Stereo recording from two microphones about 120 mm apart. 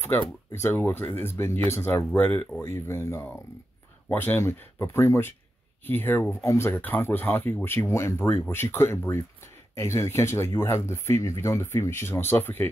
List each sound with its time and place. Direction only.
0.1 s speech: 20° left (ahead or behind)